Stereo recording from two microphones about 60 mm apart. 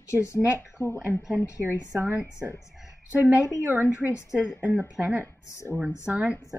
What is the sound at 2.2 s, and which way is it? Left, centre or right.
Speech, left.